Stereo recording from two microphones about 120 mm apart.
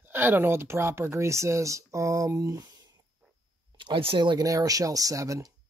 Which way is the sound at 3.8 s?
45° right (ahead or behind).